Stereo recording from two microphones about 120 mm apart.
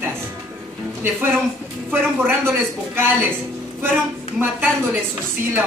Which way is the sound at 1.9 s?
20° right (ahead or behind).